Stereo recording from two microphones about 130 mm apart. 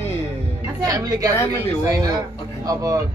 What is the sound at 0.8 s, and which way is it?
Speech, 30° right (ahead or behind).